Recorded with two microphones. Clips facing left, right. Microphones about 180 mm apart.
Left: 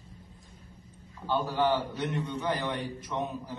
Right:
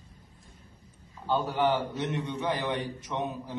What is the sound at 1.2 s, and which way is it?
A man's voice, 25° right (ahead or behind).